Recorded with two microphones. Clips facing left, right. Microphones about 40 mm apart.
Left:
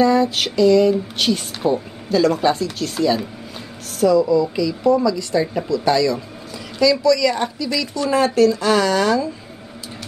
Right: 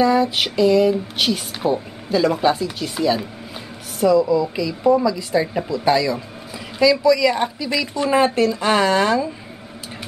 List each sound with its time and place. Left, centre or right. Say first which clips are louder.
0.0 s speech: left 1 dB; centre